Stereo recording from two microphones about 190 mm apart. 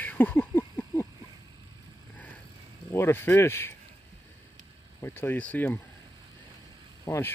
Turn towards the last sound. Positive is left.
turn(degrees=10)  # may be behind; listen again after turning